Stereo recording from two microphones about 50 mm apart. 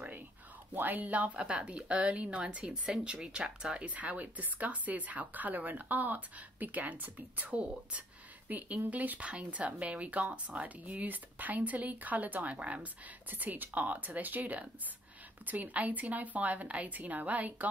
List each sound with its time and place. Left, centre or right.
0.7 s speech: right
13.3 s speech: right